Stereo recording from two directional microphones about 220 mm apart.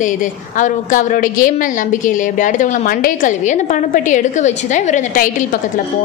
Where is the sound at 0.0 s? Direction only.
35° left (ahead or behind).